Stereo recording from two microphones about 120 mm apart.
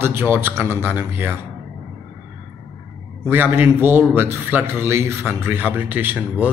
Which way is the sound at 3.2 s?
15° right (ahead or behind).